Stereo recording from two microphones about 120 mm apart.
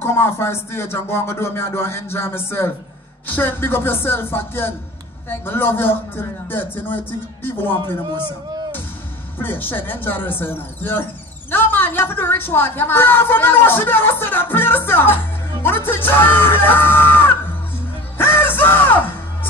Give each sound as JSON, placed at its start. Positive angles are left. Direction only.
{"t": 0.0, "sound": "a woman's voice", "side_deg": 20}
{"t": 9.4, "sound": "a woman's voice", "side_deg": 15}
{"t": 18.1, "sound": "music", "side_deg": 15}